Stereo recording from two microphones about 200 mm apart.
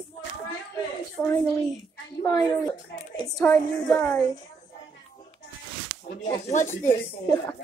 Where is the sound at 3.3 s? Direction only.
10° left (ahead or behind).